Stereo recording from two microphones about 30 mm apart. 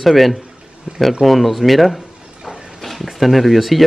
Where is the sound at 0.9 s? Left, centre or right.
Right.